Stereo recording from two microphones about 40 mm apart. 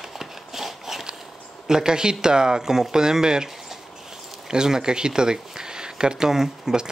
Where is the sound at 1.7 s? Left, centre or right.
Centre.